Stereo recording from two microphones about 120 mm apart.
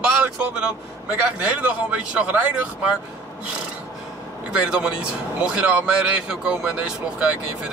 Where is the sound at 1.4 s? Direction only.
10° right (ahead or behind).